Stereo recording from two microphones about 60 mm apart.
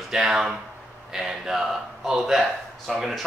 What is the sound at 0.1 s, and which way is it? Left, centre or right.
Speech, centre.